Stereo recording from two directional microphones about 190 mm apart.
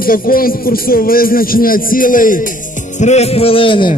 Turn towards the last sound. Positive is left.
turn(degrees=25)  # may be behind; listen again after turning